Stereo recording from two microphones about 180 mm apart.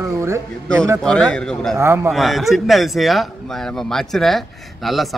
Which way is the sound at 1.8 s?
15° right (ahead or behind).